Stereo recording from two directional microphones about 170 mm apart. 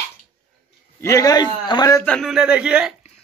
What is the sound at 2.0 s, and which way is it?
Speech, centre (ahead or behind).